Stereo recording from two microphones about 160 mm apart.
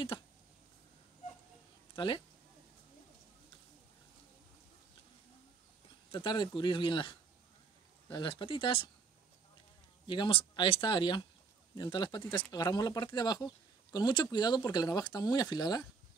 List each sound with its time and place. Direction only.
2.0 s speech: 30° left (ahead or behind)
6.1 s speech: 30° left (ahead or behind)
10.0 s speech: 30° left (ahead or behind)